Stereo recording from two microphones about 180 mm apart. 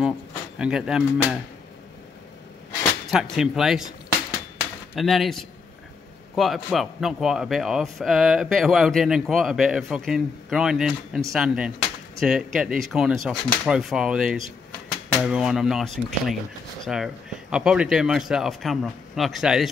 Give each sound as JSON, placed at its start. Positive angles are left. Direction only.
{"t": 0.6, "sound": "a man's voice", "side_deg": -5}
{"t": 3.1, "sound": "a man's voice", "side_deg": 0}
{"t": 4.9, "sound": "a man's voice", "side_deg": 0}